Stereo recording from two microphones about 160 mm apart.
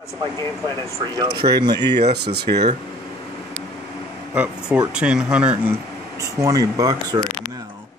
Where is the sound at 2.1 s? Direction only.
90° right.